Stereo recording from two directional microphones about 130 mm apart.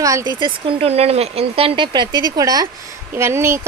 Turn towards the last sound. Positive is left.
turn(degrees=-20)  # may be behind; listen again after turning